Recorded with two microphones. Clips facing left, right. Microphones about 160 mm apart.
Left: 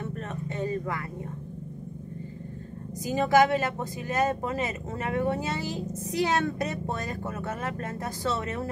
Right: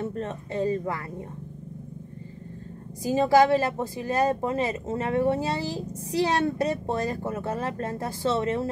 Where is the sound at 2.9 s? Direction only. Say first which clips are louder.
Right 3 dB; 30° right (ahead or behind).